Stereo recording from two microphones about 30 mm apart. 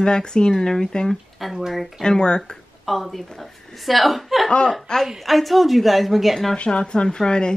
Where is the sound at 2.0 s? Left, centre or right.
Left.